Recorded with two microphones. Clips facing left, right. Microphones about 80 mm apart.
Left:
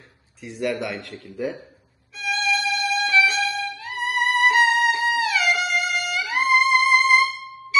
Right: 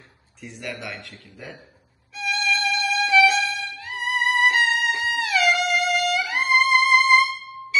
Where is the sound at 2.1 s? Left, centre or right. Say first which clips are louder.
Left 1 dB; centre.